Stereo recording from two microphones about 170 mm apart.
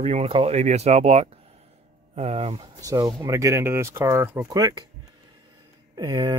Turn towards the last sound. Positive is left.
turn(degrees=-20)  # may be behind; listen again after turning